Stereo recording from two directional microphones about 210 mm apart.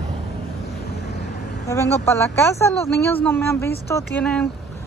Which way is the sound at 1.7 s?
15° left (ahead or behind).